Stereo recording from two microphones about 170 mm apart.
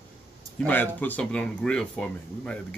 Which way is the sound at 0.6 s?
10° left (ahead or behind).